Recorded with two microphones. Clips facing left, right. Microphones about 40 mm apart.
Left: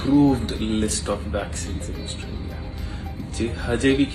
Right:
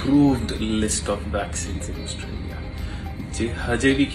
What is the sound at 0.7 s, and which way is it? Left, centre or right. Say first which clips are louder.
Speech: even; right.